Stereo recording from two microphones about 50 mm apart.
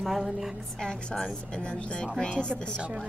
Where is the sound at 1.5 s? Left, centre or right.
Left.